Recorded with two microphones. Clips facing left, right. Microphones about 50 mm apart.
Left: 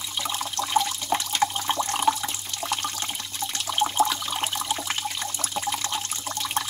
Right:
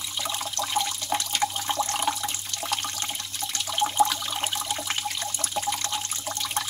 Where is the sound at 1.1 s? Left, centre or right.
Centre.